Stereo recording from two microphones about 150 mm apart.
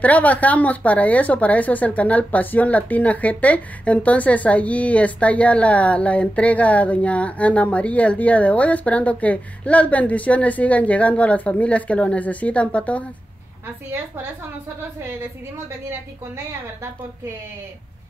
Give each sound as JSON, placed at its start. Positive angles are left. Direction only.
{"t": 0.0, "sound": "speech", "side_deg": 10}
{"t": 13.9, "sound": "a woman's voice", "side_deg": -15}